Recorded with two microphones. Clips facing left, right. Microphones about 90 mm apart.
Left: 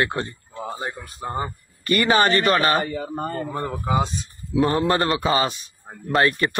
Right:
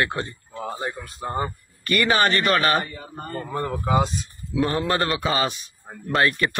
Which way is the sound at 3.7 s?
5° left (ahead or behind).